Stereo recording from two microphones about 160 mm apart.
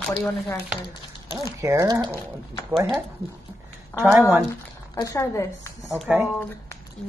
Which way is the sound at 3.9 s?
15° left (ahead or behind).